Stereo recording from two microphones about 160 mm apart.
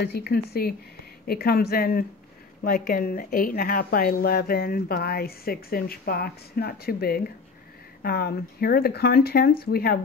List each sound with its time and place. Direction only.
0.0 s a woman's voice: 90° left; by 9.9 s 70° left (ahead or behind)